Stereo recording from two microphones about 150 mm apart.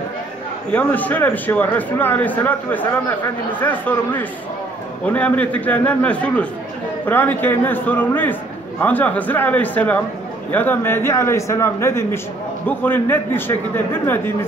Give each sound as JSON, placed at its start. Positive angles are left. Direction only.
{"t": 0.7, "sound": "a man's voice", "side_deg": 10}